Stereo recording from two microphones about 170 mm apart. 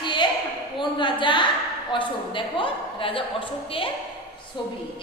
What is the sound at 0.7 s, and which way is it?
A woman's voice, 30° left (ahead or behind).